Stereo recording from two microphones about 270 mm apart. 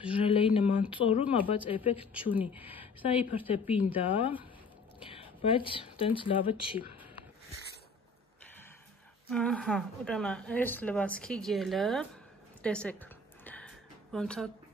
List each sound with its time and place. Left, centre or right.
0.0 s speech: centre
2.5 s speech: centre
2.8 s a woman's voice: left
9.3 s speech: centre
12.6 s a sound: centre
14.1 s speech: centre